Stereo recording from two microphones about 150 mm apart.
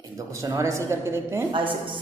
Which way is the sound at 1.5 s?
35° right (ahead or behind).